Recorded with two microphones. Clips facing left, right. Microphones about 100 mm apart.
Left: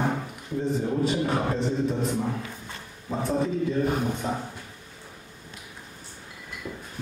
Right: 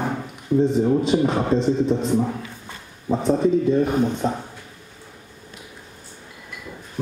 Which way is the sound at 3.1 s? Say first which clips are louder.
Right 8 dB; 20° right (ahead or behind).